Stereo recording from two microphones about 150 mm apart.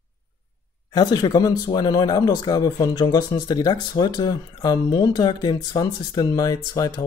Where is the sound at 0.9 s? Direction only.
25° left (ahead or behind).